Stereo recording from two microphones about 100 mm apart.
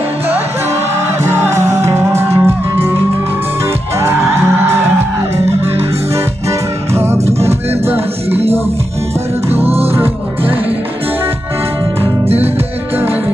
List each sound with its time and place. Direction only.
1.2 s music: 30° right (ahead or behind)
6.9 s music: 25° right (ahead or behind)
8.3 s music: 90° right